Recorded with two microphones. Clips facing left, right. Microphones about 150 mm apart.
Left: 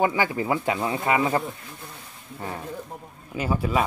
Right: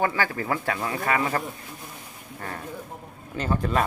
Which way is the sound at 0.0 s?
15° left (ahead or behind).